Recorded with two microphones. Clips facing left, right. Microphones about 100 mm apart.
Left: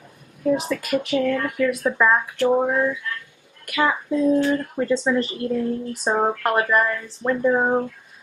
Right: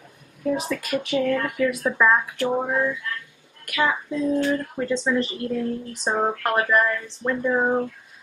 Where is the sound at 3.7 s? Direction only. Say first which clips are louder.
Left 2 dB; 5° left (ahead or behind).